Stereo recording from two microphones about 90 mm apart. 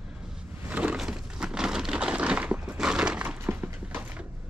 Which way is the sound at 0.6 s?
15° right (ahead or behind).